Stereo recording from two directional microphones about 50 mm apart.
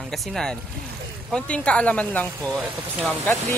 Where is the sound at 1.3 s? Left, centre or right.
Left.